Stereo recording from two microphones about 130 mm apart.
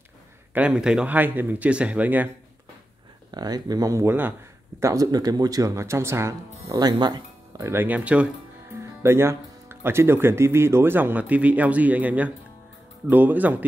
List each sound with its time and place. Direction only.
0.6 s speech: 5° right (ahead or behind)
3.3 s speech: 30° right (ahead or behind)
7.6 s speech: 15° right (ahead or behind)